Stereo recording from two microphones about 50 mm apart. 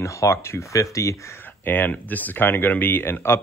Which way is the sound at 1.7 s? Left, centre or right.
Left.